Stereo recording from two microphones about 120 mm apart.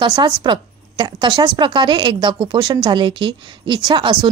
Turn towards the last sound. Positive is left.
turn(degrees=-40)  # may be behind; listen again after turning